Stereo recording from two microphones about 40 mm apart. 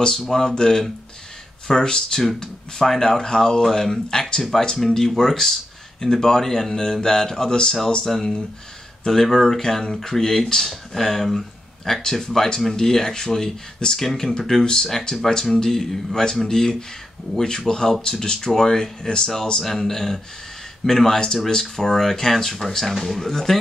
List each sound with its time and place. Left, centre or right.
0.3 s speech: centre
8.0 s speech: centre